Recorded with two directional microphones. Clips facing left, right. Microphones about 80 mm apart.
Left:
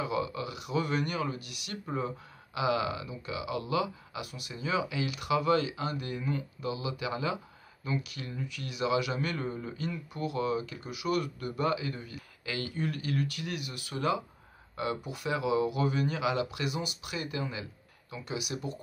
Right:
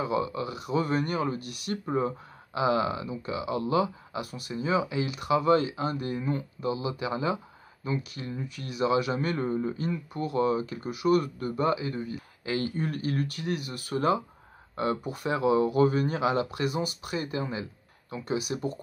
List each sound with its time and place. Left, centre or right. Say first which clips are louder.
0.0 s speech: right 4 dB; right